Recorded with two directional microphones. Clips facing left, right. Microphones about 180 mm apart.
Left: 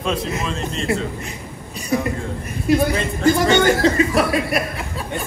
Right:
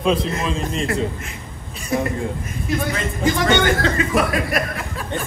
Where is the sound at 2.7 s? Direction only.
35° left (ahead or behind).